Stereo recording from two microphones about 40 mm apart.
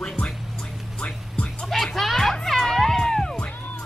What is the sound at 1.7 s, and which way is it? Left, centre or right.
Music, centre.